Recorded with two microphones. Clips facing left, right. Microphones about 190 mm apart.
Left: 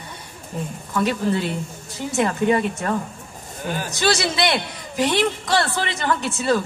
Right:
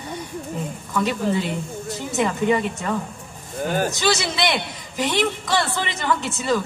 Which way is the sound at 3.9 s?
15° right (ahead or behind).